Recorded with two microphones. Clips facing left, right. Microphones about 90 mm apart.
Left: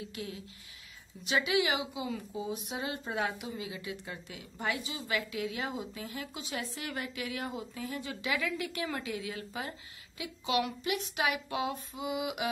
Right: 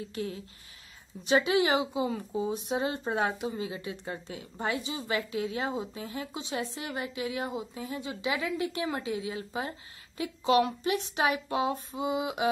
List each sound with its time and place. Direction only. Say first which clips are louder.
0.1 s a woman's voice: right 6 dB; 35° right (ahead or behind)
10.1 s speech: right 7 dB; 40° right (ahead or behind)